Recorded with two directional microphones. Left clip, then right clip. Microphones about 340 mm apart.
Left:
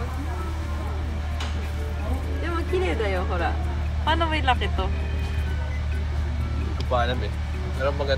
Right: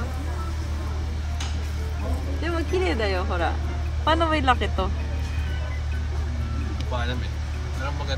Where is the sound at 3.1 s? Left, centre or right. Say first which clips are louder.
Right 1 dB; right.